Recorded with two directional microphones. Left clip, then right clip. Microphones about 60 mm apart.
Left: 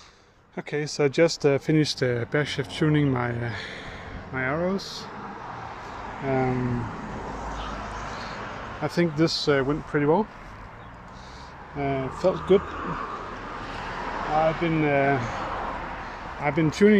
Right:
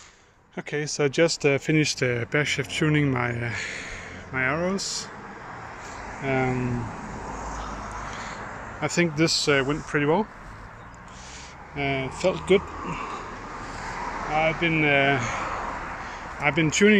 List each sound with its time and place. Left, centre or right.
0.6 s speech: centre
5.9 s a sound: right
6.3 s speech: right
8.1 s a sound: centre
9.8 s speech: centre
11.7 s speech: centre
13.6 s vehicle: right
13.8 s vehicle: left
14.6 s speech: centre